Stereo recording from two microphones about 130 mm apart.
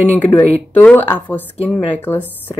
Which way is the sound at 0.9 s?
15° left (ahead or behind).